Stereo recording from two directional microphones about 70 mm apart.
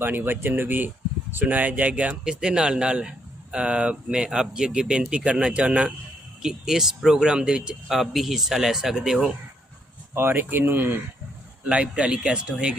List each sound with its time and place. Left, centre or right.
0.0 s speech: right; by 9.3 s centre
10.1 s speech: right
11.6 s speech: centre